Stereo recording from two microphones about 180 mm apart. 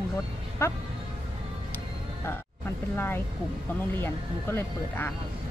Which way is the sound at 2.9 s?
10° left (ahead or behind).